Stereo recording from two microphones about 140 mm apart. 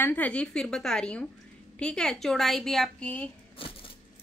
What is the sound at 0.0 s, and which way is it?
A woman's voice, 10° left (ahead or behind).